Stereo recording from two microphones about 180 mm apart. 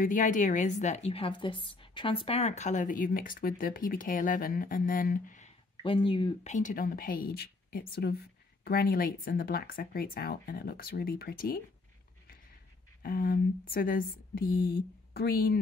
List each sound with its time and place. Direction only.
0.0 s a woman's voice: 50° left (ahead or behind)
5.8 s speech: 30° left (ahead or behind)
6.5 s a woman's voice: 45° left (ahead or behind)
13.0 s a woman's voice: 55° left (ahead or behind)